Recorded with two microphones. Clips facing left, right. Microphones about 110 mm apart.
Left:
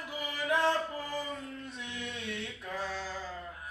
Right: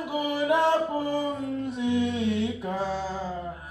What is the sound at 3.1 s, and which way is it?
Mantra, 40° right (ahead or behind).